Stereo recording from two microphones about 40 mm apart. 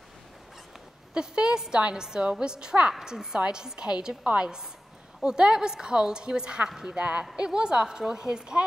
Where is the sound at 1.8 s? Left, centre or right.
Right.